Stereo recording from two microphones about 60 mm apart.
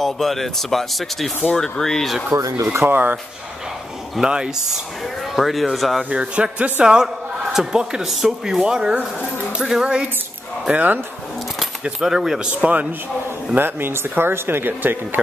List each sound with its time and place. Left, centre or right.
0.0 s speech: centre
2.3 s speech: right
2.6 s speech: right
4.1 s speech: centre
6.0 s speech: centre
10.7 s speech: right
11.8 s speech: centre
13.6 s speech: right